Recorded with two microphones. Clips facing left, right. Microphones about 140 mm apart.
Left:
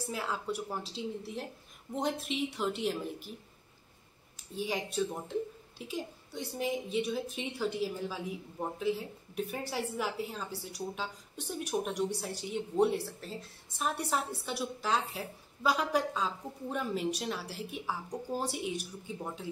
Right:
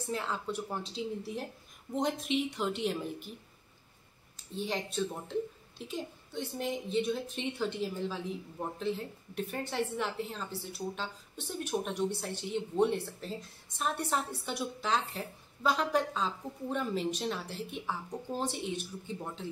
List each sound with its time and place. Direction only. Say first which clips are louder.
0.0 s speech: right 1 dB; 5° left (ahead or behind)
4.6 s a woman's voice: left 1 dB; 10° left (ahead or behind)